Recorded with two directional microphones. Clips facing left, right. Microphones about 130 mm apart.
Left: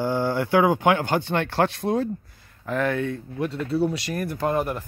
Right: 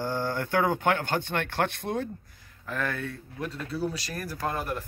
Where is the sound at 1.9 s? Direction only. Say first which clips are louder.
Left 7 dB; 70° left (ahead or behind).